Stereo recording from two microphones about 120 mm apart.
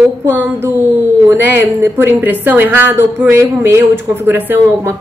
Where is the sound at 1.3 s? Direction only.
20° right (ahead or behind).